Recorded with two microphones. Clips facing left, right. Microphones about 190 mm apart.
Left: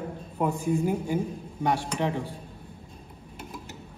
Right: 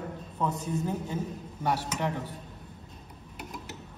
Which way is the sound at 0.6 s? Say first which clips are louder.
Left 6 dB; 10° left (ahead or behind).